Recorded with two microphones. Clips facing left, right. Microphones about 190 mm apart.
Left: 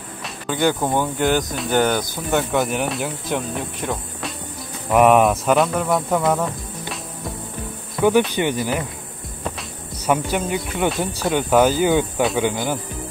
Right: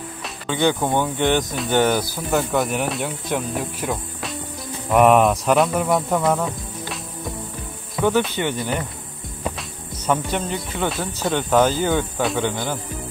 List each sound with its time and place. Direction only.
0.2 s speech: 5° left (ahead or behind)
8.4 s speech: 20° left (ahead or behind)
10.0 s speech: 10° left (ahead or behind)